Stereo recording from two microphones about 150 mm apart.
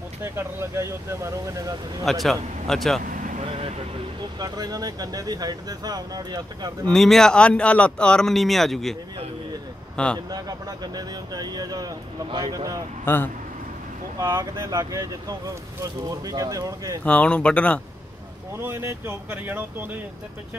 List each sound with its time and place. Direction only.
0.2 s speech: 15° right (ahead or behind)
2.2 s speech: centre (ahead or behind)
3.1 s vehicle: 65° right (ahead or behind)
3.4 s vehicle: 45° right (ahead or behind)
4.4 s speech: 25° right (ahead or behind)
6.9 s speech: centre (ahead or behind)
10.1 s speech: 25° right (ahead or behind)
13.0 s speech: 15° left (ahead or behind)
14.1 s speech: 20° right (ahead or behind)
17.0 s speech: 10° left (ahead or behind)
18.6 s speech: 15° right (ahead or behind)